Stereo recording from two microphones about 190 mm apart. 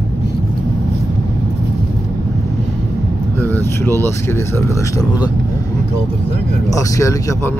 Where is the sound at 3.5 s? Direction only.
15° left (ahead or behind).